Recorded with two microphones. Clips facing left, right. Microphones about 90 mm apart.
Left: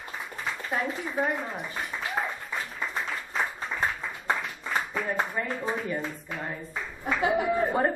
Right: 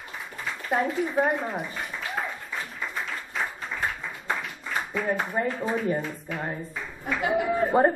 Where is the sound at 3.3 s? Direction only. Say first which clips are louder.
Left 1 dB; 30° left (ahead or behind).